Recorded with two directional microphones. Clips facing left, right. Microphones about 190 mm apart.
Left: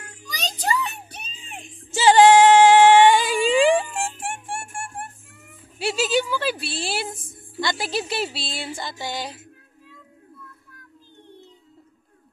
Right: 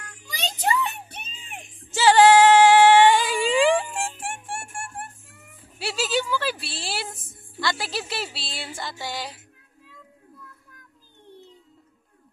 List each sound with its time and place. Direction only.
0.3 s music: 25° right (ahead or behind)
2.0 s a sound: 20° left (ahead or behind)
7.6 s music: 20° left (ahead or behind)